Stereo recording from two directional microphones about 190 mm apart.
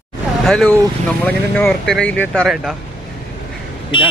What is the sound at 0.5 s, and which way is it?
Speech, 5° left (ahead or behind).